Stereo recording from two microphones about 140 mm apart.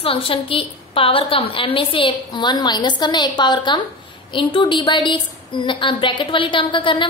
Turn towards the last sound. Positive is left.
turn(degrees=35)  # may be behind; listen again after turning